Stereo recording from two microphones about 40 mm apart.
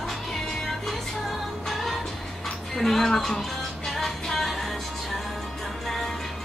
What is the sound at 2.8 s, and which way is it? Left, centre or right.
Speech, centre.